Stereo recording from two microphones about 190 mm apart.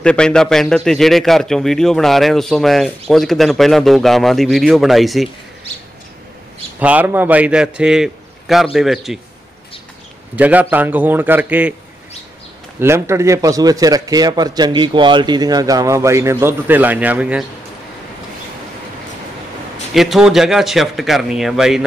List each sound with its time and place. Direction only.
0.0 s a man's voice: 5° left (ahead or behind)
6.8 s a man's voice: 10° right (ahead or behind)
10.3 s a man's voice: 10° right (ahead or behind)
12.8 s a man's voice: 15° right (ahead or behind)
19.9 s a man's voice: centre (ahead or behind)